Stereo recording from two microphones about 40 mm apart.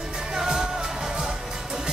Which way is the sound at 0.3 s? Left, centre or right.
Centre.